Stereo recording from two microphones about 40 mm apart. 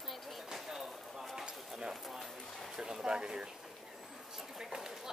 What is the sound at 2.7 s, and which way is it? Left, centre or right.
Speech, centre.